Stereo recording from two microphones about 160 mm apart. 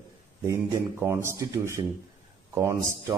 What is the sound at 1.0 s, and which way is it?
A man's voice, 15° right (ahead or behind).